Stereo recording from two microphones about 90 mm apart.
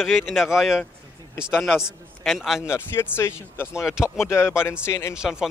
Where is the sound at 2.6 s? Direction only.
25° left (ahead or behind).